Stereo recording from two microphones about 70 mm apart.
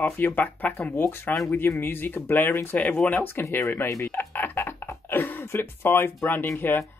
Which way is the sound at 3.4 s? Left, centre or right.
Left.